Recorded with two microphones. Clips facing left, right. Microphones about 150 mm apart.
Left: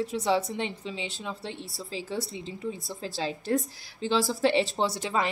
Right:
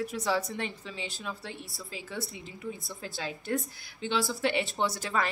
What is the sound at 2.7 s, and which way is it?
A woman's voice, 30° left (ahead or behind).